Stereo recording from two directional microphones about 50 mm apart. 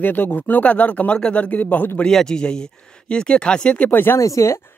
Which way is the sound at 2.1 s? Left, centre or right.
Centre.